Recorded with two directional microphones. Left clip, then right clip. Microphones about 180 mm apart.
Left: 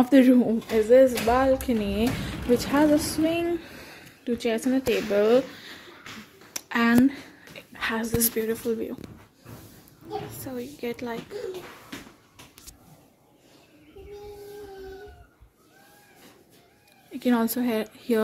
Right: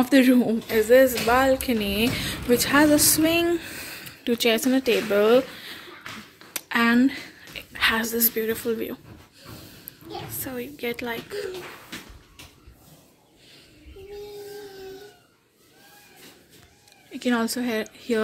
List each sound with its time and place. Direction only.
0.0 s a woman's voice: 15° left (ahead or behind)
10.4 s speech: centre (ahead or behind)
17.1 s a woman's voice: 10° left (ahead or behind)